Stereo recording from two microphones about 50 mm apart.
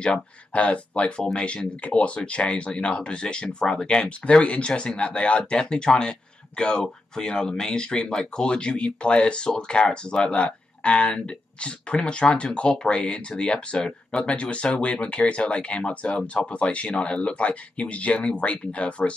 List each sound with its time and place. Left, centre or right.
0.0 s speech: left